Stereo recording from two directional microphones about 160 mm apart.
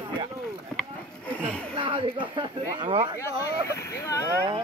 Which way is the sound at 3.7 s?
20° left (ahead or behind).